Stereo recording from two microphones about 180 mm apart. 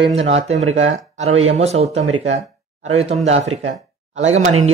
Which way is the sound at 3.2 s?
35° right (ahead or behind).